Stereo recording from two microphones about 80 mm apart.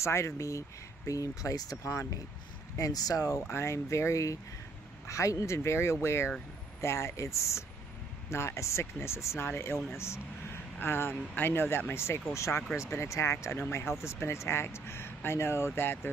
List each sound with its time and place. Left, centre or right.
0.0 s speech: left
2.8 s speech: left
3.4 s speech: left